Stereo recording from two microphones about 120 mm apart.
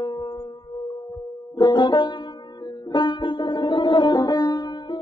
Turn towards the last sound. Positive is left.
turn(degrees=35)  # may be behind; listen again after turning